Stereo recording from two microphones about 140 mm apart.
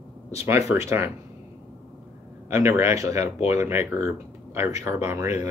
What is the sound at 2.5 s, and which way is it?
A man's voice, 20° right (ahead or behind).